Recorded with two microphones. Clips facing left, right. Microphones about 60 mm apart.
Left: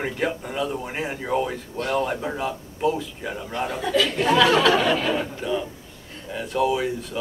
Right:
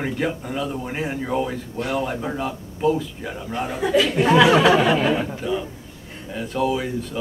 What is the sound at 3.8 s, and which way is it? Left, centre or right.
A man's voice, centre.